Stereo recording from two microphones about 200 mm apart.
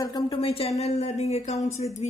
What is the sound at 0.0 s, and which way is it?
A woman's voice, 25° left (ahead or behind).